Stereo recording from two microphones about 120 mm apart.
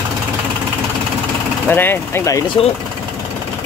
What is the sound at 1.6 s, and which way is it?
Speech, 15° left (ahead or behind).